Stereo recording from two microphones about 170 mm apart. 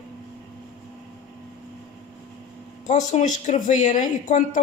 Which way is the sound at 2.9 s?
40° left (ahead or behind).